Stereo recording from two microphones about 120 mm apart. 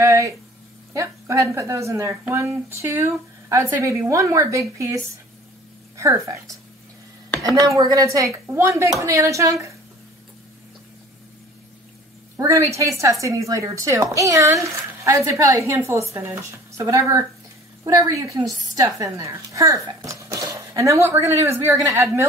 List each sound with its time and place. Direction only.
0.0 s a sound: 25° right (ahead or behind)
0.9 s speech: 25° right (ahead or behind)
7.5 s speech: 30° right (ahead or behind)
12.4 s speech: 25° right (ahead or behind)